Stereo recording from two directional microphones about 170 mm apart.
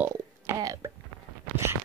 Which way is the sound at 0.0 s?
20° right (ahead or behind).